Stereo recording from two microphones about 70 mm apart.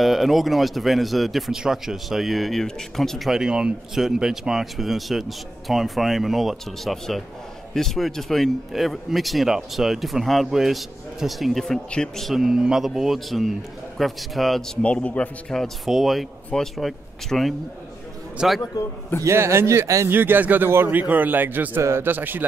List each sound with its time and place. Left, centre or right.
0.0 s speech: centre
14.8 s speech: centre
18.4 s a man's voice: centre
19.2 s speech: right
20.1 s a man's voice: right